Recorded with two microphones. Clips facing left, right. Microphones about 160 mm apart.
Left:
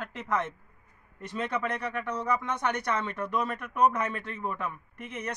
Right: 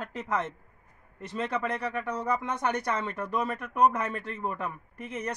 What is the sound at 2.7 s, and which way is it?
Speech, 30° right (ahead or behind).